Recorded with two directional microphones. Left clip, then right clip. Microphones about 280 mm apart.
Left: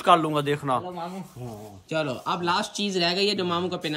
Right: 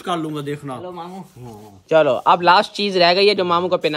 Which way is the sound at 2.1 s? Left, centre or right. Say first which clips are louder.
Right 13 dB; right.